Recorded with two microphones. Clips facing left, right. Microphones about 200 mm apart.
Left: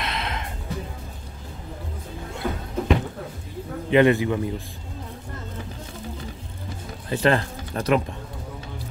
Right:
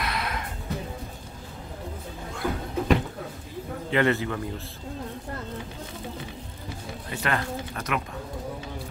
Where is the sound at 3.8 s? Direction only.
15° left (ahead or behind).